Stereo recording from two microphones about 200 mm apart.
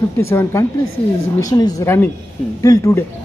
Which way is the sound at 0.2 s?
15° left (ahead or behind).